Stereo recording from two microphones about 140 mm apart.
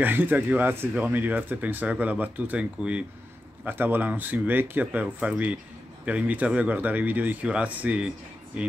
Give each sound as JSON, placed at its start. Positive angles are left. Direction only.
{"t": 0.0, "sound": "speech", "side_deg": -15}